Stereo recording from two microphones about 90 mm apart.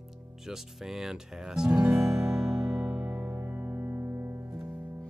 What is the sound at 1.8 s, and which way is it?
Music, 25° right (ahead or behind).